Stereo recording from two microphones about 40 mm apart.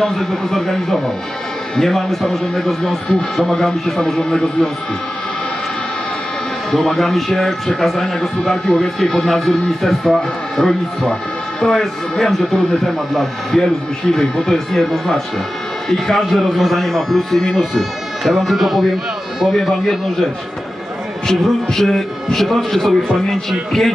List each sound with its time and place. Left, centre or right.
0.0 s speech: centre
3.1 s speech: centre
6.7 s speech: centre
21.3 s speech: centre